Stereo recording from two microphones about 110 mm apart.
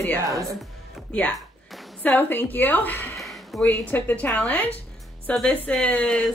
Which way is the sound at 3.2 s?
Centre (ahead or behind).